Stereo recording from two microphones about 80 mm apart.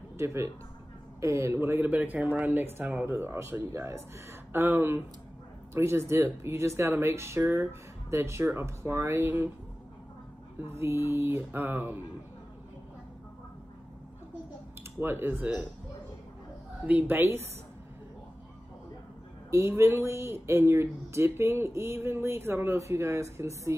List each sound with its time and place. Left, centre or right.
0.2 s speech: right
1.9 s speech: centre
10.6 s speech: right
14.8 s speech: right
16.8 s a woman's voice: centre
17.2 s speech: right
19.5 s speech: right